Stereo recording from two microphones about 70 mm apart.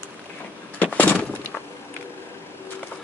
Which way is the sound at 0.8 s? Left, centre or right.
Left.